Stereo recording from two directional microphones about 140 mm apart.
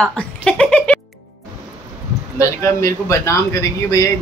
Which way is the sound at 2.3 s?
20° left (ahead or behind).